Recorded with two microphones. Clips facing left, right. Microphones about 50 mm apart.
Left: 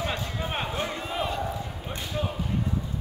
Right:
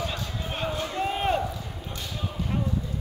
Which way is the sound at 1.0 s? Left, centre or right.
Right.